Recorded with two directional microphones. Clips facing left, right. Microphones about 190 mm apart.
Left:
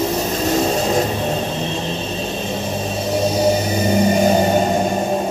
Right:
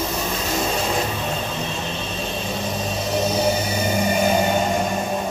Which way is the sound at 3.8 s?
35° left (ahead or behind).